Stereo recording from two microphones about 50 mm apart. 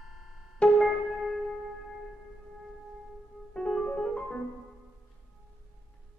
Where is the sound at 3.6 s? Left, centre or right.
Centre.